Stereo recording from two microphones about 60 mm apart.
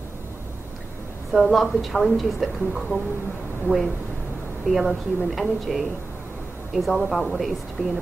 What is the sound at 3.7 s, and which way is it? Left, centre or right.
Speech, right.